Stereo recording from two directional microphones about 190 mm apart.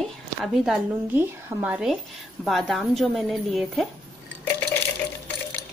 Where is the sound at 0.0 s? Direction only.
Centre (ahead or behind).